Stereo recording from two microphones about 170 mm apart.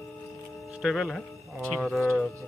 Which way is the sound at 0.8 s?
Centre (ahead or behind).